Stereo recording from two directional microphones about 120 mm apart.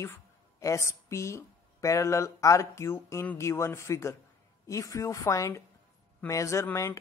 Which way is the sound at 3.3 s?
25° left (ahead or behind).